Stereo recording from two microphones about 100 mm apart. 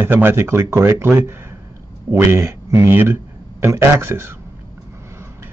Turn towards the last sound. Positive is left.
turn(degrees=-25)  # may be behind; listen again after turning